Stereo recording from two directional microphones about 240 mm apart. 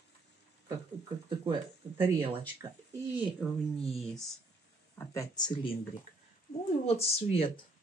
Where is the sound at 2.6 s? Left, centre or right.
Centre.